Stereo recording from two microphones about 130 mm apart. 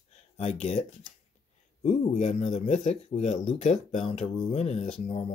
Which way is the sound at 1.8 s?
65° left (ahead or behind).